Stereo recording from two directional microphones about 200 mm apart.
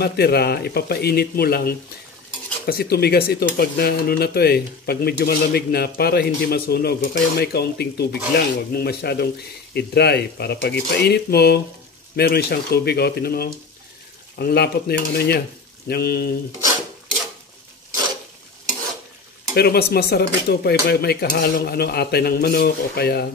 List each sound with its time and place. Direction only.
0.0 s speech: 50° left (ahead or behind)
19.5 s speech: 50° left (ahead or behind)